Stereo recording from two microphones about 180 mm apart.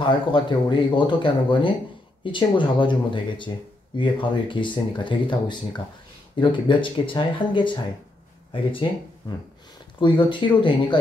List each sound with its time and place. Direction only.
0.0 s speech: 25° left (ahead or behind)
9.9 s speech: 25° left (ahead or behind)